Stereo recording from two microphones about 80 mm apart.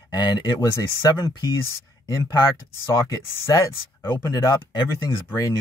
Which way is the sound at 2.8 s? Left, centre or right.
Left.